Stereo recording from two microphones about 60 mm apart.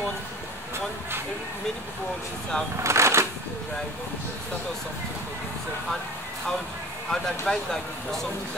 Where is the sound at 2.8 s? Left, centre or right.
Right.